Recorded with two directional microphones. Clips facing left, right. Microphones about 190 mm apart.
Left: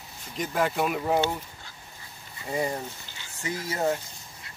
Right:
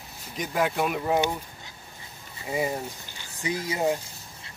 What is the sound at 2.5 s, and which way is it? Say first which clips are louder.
Speech: right 1 dB; 5° right (ahead or behind).